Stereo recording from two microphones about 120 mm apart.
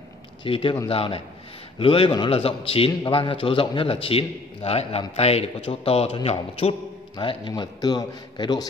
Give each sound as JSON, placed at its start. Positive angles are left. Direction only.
{"t": 0.4, "sound": "a man's voice", "side_deg": 45}
{"t": 7.2, "sound": "a man's voice", "side_deg": 40}